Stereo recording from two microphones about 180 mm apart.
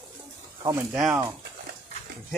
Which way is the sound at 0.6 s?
20° right (ahead or behind).